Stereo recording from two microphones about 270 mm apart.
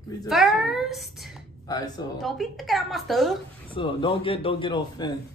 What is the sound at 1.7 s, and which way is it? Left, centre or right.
Speech, centre.